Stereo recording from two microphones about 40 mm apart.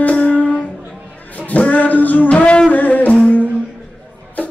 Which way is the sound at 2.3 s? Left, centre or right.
Left.